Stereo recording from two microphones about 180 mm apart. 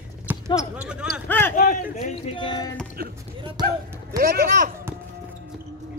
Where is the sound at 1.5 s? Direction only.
50° left (ahead or behind).